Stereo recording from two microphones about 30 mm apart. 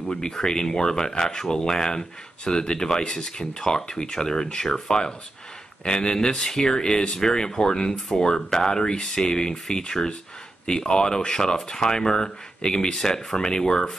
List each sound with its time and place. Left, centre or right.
0.3 s speech: left